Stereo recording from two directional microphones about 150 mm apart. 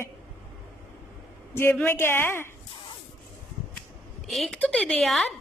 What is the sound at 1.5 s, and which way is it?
Speech, 15° left (ahead or behind).